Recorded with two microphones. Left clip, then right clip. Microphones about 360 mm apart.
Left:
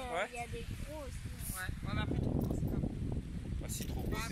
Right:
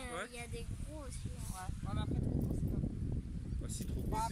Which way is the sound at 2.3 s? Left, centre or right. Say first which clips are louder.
Left 3 dB; left.